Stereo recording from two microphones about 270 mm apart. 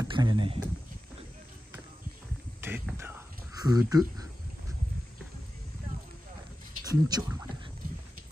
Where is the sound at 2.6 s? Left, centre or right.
Centre.